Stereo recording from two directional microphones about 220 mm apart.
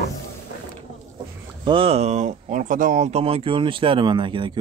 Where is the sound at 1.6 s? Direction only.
25° right (ahead or behind).